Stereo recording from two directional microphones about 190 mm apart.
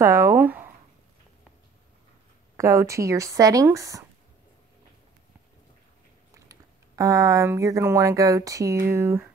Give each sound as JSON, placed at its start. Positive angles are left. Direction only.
{"t": 0.0, "sound": "speech", "side_deg": -15}
{"t": 2.5, "sound": "speech", "side_deg": -15}
{"t": 6.3, "sound": "speech", "side_deg": -15}